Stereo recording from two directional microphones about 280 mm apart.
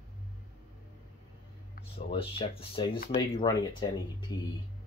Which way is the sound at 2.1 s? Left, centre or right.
Centre.